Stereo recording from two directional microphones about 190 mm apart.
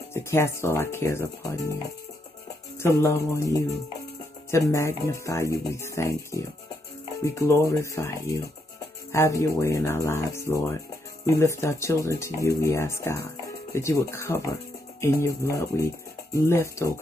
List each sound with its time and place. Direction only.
0.1 s speech: 15° left (ahead or behind)
2.8 s speech: 15° left (ahead or behind)
4.5 s speech: 15° left (ahead or behind)
7.2 s speech: 15° left (ahead or behind)